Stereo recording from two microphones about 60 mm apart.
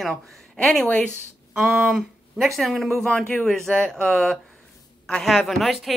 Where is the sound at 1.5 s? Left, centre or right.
Centre.